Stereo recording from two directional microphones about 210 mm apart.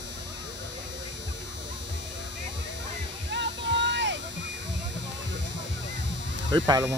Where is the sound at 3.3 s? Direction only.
55° right (ahead or behind).